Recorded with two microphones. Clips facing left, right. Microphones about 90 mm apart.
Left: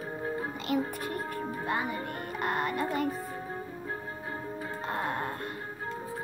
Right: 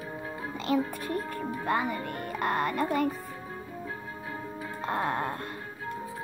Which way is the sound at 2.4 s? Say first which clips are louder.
Right 2 dB; 45° right (ahead or behind).